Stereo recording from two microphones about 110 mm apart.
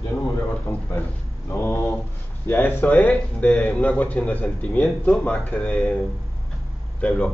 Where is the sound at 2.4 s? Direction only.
20° left (ahead or behind).